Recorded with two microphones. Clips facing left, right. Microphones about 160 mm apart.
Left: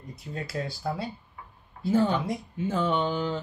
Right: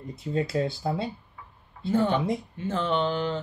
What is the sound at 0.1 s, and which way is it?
Speech, 25° right (ahead or behind).